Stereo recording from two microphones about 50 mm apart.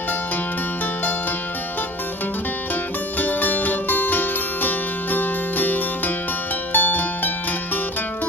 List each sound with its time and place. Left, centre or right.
3.2 s music: left